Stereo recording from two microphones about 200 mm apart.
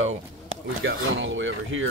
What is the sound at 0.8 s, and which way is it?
Speech, 75° right (ahead or behind).